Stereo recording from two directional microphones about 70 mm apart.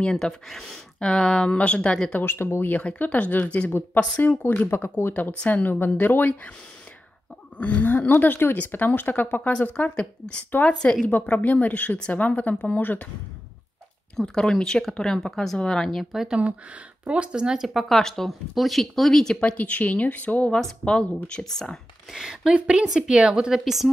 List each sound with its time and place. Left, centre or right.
0.0 s speech: centre
2.1 s speech: left
2.8 s speech: centre
7.5 s speech: centre
14.1 s speech: centre
17.0 s speech: centre
19.4 s speech: centre
22.1 s a woman's voice: centre